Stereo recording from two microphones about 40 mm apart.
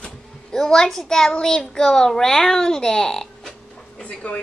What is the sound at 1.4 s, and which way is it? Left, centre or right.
A child's voice, centre.